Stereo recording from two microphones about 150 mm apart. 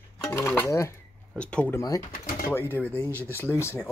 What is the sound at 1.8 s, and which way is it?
Speech, 20° left (ahead or behind).